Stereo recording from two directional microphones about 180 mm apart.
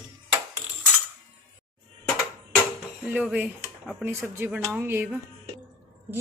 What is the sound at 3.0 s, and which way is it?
Speech, 5° right (ahead or behind).